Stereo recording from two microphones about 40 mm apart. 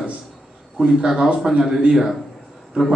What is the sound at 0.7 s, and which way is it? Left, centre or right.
Speech, centre.